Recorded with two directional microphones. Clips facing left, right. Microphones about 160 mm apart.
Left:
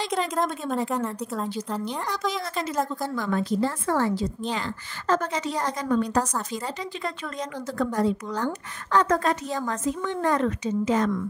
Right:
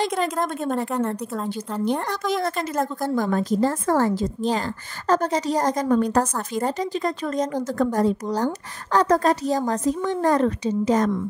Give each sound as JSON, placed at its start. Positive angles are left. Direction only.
{"t": 0.4, "sound": "a woman's voice", "side_deg": 0}
{"t": 1.9, "sound": "a woman's voice", "side_deg": -55}